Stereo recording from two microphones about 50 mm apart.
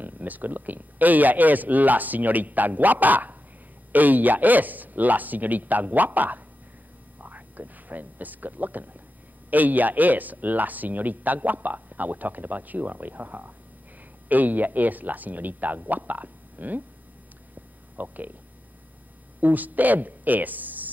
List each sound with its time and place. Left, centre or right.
0.0 s speech: right
17.9 s speech: right
19.4 s speech: right